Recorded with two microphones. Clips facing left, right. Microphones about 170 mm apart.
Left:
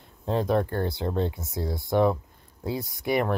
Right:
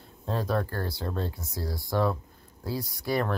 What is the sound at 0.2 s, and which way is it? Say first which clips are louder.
Speech: left 5 dB; 20° left (ahead or behind).